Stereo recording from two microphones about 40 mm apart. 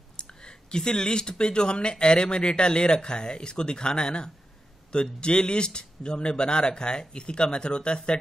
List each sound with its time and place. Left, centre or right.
0.2 s speech: centre